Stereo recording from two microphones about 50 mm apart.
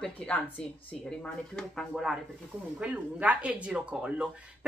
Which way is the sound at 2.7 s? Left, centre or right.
Right.